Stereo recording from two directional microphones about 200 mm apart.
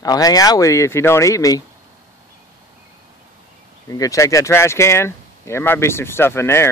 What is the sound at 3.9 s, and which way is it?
Speech, 15° left (ahead or behind).